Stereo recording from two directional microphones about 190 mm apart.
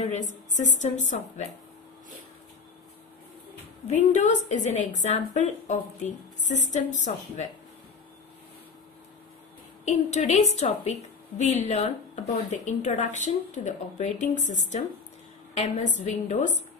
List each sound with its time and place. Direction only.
0.0 s a woman's voice: 40° left (ahead or behind)
3.8 s a woman's voice: 40° left (ahead or behind)
9.8 s a woman's voice: 35° left (ahead or behind)